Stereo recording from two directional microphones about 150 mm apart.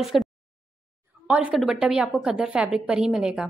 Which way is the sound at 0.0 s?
Centre (ahead or behind).